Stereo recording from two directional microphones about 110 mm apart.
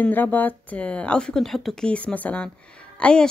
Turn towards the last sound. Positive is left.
turn(degrees=10)  # may be behind; listen again after turning